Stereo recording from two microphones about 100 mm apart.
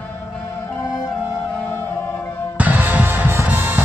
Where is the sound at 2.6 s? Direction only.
15° right (ahead or behind).